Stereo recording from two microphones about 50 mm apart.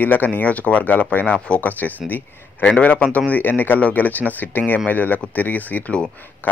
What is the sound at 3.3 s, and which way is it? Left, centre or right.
Speech, left.